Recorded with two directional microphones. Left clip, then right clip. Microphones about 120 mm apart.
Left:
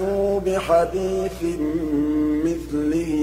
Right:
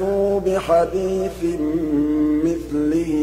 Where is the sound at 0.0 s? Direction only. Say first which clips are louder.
Right 2 dB; 25° right (ahead or behind).